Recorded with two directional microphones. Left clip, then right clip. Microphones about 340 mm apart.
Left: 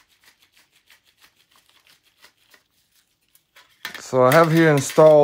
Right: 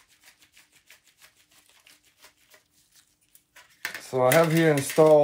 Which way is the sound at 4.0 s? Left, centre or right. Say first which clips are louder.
Left 6 dB; left.